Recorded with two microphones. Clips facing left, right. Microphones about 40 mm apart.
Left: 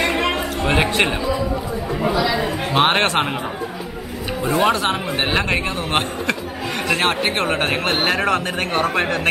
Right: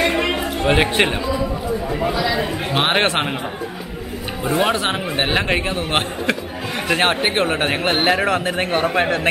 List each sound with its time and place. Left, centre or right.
0.0 s a sound: centre
2.1 s speech: centre
3.0 s speech: centre
4.4 s speech: centre
5.8 s a man's voice: centre